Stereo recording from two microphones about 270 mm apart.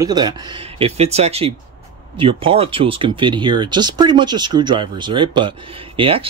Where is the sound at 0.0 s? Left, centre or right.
Centre.